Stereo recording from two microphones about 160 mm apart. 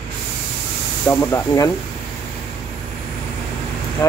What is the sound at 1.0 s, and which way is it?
Speech, 15° left (ahead or behind).